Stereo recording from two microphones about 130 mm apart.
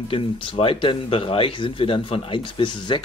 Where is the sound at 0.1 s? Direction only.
45° left (ahead or behind).